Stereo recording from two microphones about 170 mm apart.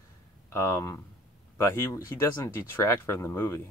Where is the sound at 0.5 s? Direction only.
15° left (ahead or behind).